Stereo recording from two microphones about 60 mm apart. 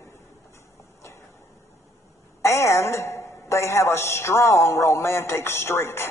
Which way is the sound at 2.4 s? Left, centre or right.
Left.